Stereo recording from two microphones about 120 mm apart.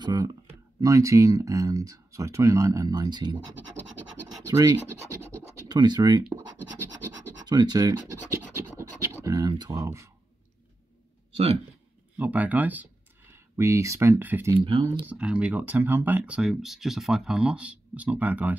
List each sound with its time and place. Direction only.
0.0 s speech: 30° right (ahead or behind)
4.5 s speech: 30° right (ahead or behind)
7.1 s scratch: 35° right (ahead or behind)
9.2 s a sound: 30° right (ahead or behind)
9.5 s speech: 35° right (ahead or behind)
12.2 s speech: 15° right (ahead or behind)
13.3 s speech: 25° right (ahead or behind)
14.6 s speech: 40° right (ahead or behind)
15.0 s speech: 10° right (ahead or behind)